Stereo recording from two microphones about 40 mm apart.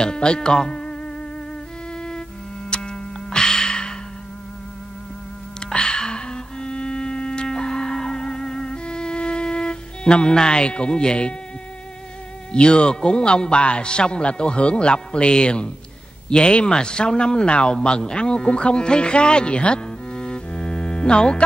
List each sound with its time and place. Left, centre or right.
0.0 s speech: left
2.7 s music: left
5.7 s music: left
12.5 s a man's voice: left